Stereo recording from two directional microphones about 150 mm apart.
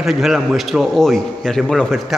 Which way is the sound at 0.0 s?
Centre (ahead or behind).